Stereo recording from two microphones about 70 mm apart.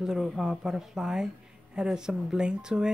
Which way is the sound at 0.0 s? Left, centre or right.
Centre.